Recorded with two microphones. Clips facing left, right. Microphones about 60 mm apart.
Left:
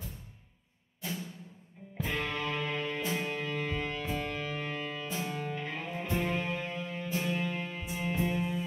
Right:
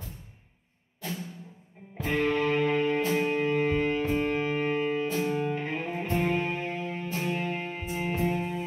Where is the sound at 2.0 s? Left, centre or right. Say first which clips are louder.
Right 8 dB; right.